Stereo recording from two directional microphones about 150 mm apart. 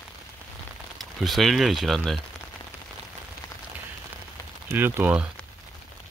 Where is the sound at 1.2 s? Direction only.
Centre (ahead or behind).